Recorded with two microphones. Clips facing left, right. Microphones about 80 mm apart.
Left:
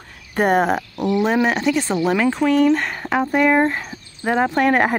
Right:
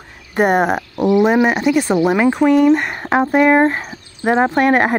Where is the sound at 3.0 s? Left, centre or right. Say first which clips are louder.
Right 4 dB; right.